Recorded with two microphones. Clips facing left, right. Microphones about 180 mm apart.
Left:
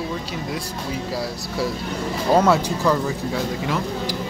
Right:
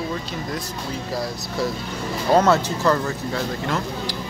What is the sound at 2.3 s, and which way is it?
Speech, 10° left (ahead or behind).